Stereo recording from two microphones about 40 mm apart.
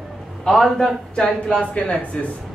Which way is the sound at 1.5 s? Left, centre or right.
Left.